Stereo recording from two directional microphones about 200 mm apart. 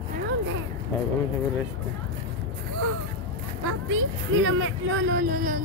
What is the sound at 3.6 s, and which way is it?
Speech, 90° right.